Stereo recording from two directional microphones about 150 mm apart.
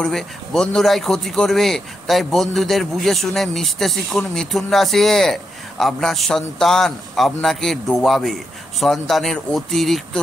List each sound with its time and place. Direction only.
0.0 s speech: 5° left (ahead or behind)